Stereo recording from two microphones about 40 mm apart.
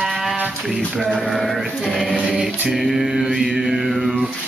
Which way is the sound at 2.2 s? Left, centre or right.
Centre.